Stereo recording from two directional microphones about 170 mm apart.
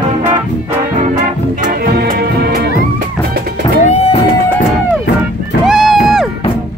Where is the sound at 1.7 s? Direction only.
65° right (ahead or behind).